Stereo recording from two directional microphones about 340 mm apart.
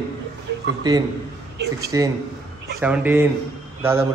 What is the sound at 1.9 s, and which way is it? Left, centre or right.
A man's voice, centre.